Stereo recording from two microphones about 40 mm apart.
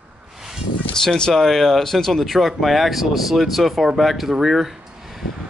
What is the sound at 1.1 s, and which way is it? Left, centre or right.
Speech, centre.